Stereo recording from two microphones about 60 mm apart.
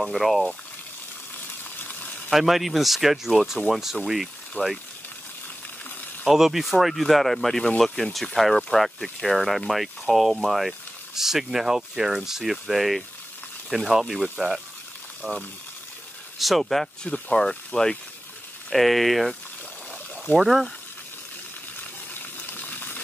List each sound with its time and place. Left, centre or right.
0.0 s speech: centre
2.3 s speech: centre
4.6 s speech: left
6.2 s speech: centre
15.2 s speech: centre
18.7 s speech: centre
20.3 s speech: centre
22.1 s gush: left